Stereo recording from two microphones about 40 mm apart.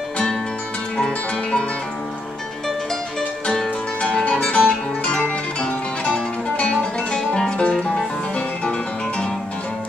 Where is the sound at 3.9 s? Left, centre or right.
Left.